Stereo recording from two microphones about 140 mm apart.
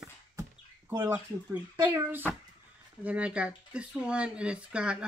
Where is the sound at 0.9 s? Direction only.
15° right (ahead or behind).